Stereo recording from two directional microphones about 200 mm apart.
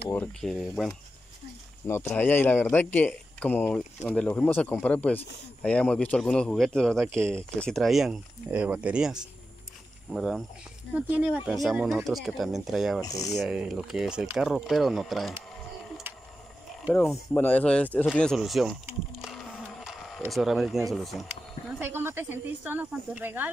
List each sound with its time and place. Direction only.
0.1 s speech: 5° left (ahead or behind)
1.9 s speech: 10° left (ahead or behind)
13.0 s speech: 15° left (ahead or behind)
13.3 s speech: 5° right (ahead or behind)
17.1 s speech: 10° left (ahead or behind)
18.9 s a sound: centre (ahead or behind)
20.2 s speech: centre (ahead or behind)